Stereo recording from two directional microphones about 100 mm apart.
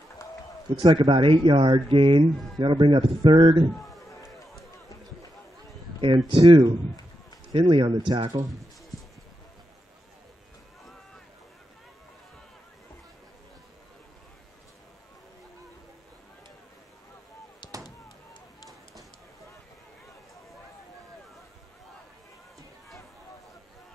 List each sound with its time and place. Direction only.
0.8 s speech: 55° right (ahead or behind)
5.9 s speech: 60° right (ahead or behind)